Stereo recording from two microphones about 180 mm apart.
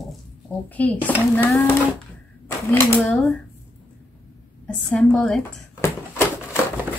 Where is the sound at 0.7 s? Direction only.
10° left (ahead or behind).